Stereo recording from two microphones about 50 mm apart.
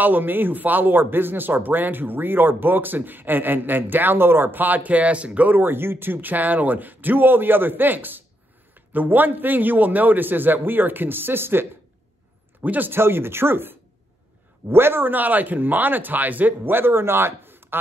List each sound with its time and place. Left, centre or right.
0.0 s speech: right
5.6 s speech: right
12.6 s speech: right
12.9 s speech: right